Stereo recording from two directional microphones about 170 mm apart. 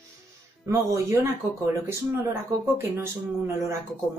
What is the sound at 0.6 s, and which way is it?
Speech, 20° right (ahead or behind).